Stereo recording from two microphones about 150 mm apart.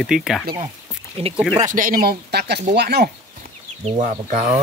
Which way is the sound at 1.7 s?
65° right (ahead or behind).